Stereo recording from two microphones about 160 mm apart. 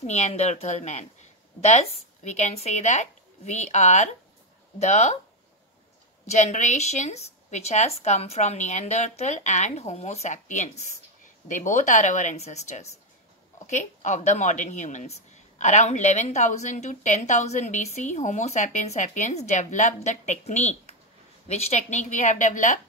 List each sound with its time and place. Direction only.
0.0 s speech: 45° left (ahead or behind)
6.2 s speech: 45° left (ahead or behind)